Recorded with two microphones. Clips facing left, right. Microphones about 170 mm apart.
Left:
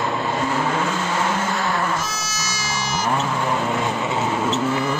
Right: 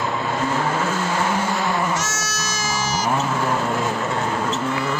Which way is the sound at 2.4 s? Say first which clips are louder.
Right 3 dB; 50° right (ahead or behind).